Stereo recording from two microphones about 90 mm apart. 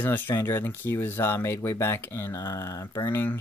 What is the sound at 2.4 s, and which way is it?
Speech, 40° left (ahead or behind).